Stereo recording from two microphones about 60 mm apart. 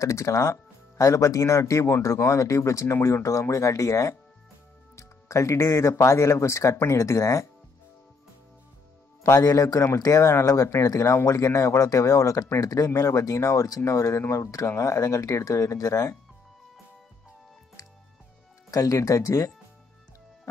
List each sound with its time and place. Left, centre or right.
0.0 s speech: left
9.4 s a man's voice: left
9.9 s speech: left
18.7 s speech: left